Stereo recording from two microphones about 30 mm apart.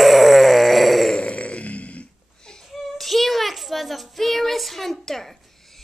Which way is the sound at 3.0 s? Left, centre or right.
Centre.